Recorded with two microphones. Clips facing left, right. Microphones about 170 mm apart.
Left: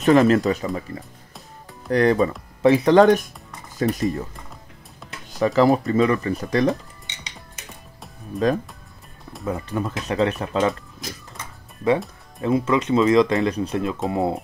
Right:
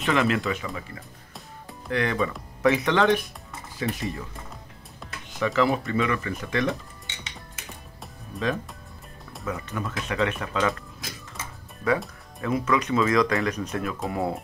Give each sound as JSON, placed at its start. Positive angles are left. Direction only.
{"t": 0.0, "sound": "speech", "side_deg": 40}
{"t": 1.9, "sound": "speech", "side_deg": 40}
{"t": 5.4, "sound": "speech", "side_deg": 40}
{"t": 8.3, "sound": "speech", "side_deg": 0}
{"t": 9.5, "sound": "speech", "side_deg": 30}
{"t": 12.4, "sound": "speech", "side_deg": 25}